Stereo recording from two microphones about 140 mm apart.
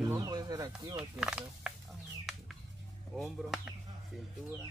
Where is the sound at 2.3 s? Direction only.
5° right (ahead or behind).